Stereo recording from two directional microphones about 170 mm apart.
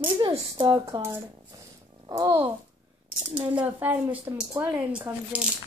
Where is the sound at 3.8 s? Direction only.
10° right (ahead or behind).